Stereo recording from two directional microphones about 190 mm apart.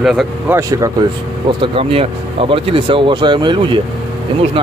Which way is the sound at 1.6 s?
30° right (ahead or behind).